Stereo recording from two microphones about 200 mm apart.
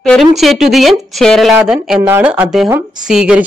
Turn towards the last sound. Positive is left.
turn(degrees=-5)  # may be behind; listen again after turning